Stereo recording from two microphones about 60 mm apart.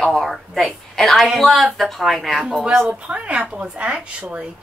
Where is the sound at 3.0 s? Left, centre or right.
Right.